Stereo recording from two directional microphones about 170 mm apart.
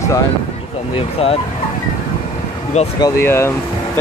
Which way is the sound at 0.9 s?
35° left (ahead or behind).